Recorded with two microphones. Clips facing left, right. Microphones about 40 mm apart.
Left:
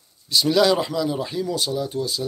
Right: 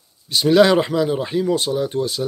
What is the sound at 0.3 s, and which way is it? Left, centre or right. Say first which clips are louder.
Speech: right 4 dB; right.